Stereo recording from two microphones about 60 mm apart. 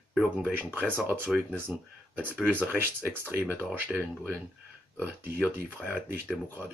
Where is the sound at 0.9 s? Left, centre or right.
Right.